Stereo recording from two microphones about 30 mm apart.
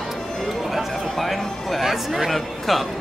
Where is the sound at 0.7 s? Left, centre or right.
Centre.